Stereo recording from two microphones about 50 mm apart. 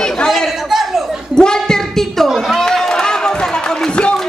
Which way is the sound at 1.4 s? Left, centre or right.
Centre.